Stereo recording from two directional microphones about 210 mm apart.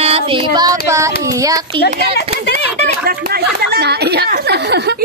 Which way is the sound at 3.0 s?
45° right (ahead or behind).